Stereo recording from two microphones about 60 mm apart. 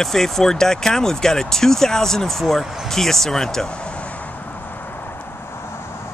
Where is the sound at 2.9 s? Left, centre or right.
Centre; by 5.7 s left.